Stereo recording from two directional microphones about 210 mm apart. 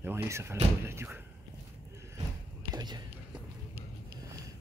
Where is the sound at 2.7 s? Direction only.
20° right (ahead or behind).